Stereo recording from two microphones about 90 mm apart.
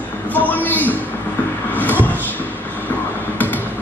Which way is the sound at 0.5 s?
20° left (ahead or behind).